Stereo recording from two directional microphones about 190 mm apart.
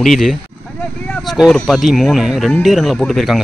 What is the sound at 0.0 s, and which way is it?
Speech, centre (ahead or behind).